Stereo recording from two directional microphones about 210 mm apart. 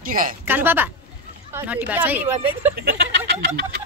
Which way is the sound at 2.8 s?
50° right (ahead or behind).